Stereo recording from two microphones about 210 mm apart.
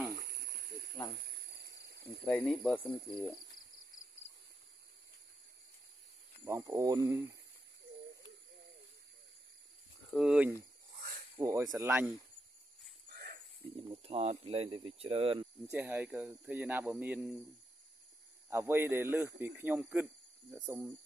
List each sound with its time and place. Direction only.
0.1 s a sound: 45° right (ahead or behind)
1.2 s cricket: 50° right (ahead or behind)
1.8 s snake: 50° right (ahead or behind)
2.2 s speech: 10° left (ahead or behind)
6.4 s speech: 10° right (ahead or behind)
10.1 s speech: 5° right (ahead or behind)
11.3 s speech: 15° right (ahead or behind)
13.8 s speech: 30° right (ahead or behind)
15.7 s speech: 10° right (ahead or behind)
18.5 s speech: 10° right (ahead or behind)